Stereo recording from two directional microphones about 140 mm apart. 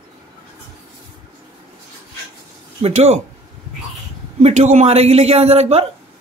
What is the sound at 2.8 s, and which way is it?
Speech, 50° right (ahead or behind).